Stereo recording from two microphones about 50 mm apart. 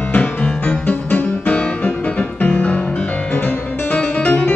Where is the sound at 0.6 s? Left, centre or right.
Left.